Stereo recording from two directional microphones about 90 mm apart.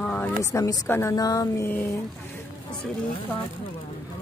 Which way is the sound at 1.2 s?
45° left (ahead or behind).